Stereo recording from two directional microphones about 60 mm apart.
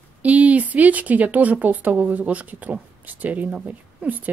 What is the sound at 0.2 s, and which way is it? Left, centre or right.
Speech, right.